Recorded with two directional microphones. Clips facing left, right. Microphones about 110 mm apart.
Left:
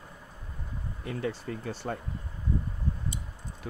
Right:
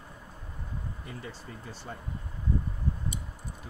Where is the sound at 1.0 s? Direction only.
75° left (ahead or behind).